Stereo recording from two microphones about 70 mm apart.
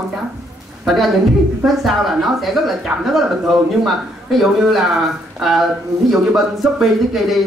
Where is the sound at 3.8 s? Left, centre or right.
Centre.